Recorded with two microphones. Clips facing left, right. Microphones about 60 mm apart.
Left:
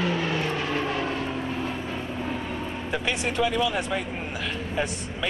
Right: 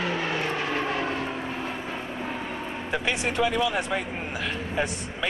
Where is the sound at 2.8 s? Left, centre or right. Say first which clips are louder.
Right 1 dB; right.